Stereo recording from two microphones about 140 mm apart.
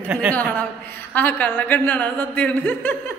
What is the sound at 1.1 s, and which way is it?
A woman's voice, 10° left (ahead or behind).